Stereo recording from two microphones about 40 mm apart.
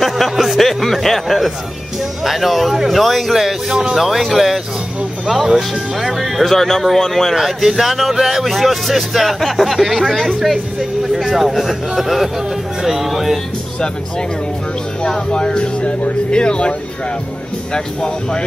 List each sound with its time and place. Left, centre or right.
0.0 s a sound: centre
0.6 s speech: centre
3.7 s speech: centre
15.1 s speech: left
17.7 s speech: left